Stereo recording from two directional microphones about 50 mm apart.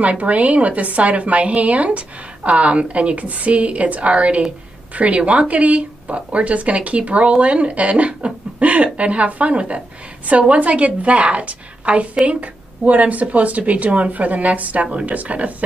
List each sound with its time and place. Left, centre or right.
0.0 s speech: right